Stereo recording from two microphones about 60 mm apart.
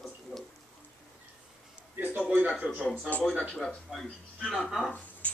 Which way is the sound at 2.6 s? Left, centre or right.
Centre.